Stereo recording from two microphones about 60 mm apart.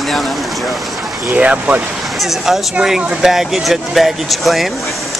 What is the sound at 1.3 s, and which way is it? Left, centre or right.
Speech, right.